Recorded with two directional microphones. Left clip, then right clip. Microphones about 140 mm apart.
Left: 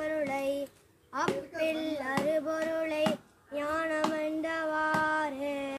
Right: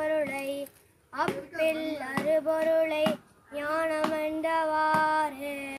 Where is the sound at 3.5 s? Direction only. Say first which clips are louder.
Right 2 dB; 20° left (ahead or behind).